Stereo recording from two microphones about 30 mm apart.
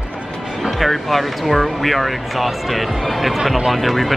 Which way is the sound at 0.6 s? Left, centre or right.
Centre.